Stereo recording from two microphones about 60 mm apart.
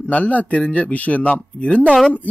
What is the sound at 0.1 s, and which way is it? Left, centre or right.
Speech, left.